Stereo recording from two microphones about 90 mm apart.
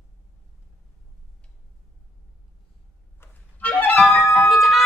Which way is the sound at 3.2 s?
20° left (ahead or behind).